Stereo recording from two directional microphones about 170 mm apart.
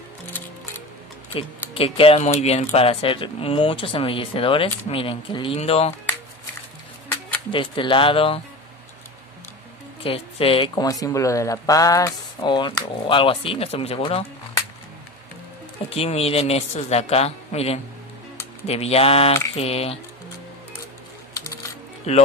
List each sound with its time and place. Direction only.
1.7 s speech: 35° left (ahead or behind)
7.5 s speech: 30° left (ahead or behind)
10.0 s speech: 35° left (ahead or behind)
15.9 s speech: 35° left (ahead or behind)
21.3 s coin: 20° left (ahead or behind)
22.1 s speech: 40° left (ahead or behind)